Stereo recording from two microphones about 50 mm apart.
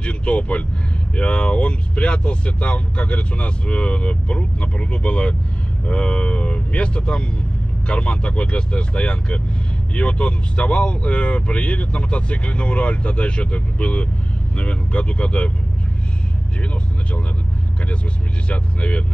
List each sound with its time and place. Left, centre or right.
0.0 s speech: left
18.5 s speech: left